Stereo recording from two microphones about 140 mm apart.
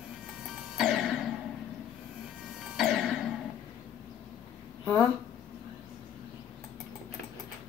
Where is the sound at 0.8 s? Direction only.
Centre (ahead or behind).